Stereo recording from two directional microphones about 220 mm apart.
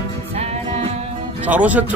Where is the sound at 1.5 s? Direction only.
5° right (ahead or behind).